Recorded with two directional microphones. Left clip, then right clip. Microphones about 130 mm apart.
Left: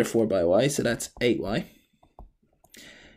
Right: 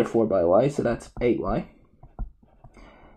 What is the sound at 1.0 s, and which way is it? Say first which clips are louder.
Speech: right 1 dB; 10° left (ahead or behind).